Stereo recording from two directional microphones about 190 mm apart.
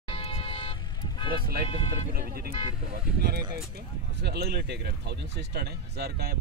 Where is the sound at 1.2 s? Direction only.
50° right (ahead or behind).